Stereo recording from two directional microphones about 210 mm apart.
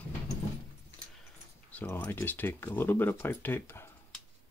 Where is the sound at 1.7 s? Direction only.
10° left (ahead or behind).